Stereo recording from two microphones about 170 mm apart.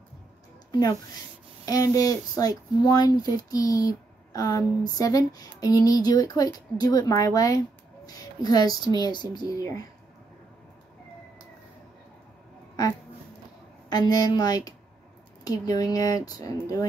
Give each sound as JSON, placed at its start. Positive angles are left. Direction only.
{"t": 0.7, "sound": "speech", "side_deg": 25}
{"t": 13.8, "sound": "speech", "side_deg": 25}